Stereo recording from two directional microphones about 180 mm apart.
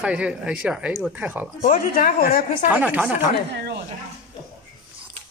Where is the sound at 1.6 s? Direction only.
50° left (ahead or behind).